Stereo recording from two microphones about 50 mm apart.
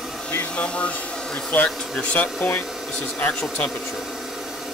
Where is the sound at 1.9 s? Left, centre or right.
Left.